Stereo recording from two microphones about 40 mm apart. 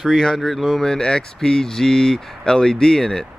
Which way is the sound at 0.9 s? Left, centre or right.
Centre.